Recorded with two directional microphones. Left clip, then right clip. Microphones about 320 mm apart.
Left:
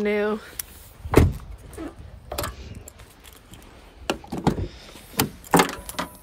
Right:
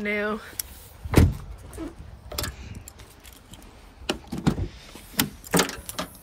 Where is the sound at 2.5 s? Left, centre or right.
Centre; by 6.2 s left.